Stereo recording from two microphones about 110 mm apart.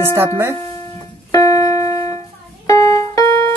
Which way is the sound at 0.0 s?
25° right (ahead or behind).